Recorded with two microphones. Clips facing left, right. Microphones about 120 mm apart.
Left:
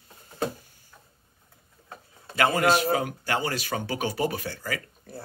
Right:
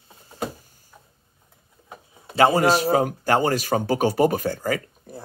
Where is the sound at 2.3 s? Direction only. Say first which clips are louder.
Right 5 dB; 35° right (ahead or behind).